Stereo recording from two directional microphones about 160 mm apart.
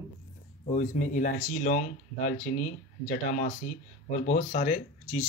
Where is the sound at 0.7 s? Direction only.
50° left (ahead or behind).